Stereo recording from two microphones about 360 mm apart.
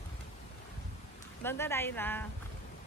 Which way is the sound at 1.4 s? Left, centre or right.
Centre.